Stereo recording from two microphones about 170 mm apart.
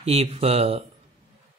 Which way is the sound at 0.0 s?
35° right (ahead or behind).